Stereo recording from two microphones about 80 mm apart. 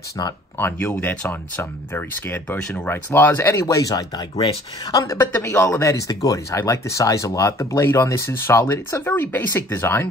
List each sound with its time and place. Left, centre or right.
0.6 s speech: left
1.3 s speech: left